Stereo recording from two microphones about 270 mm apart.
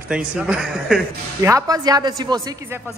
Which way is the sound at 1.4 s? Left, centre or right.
Centre.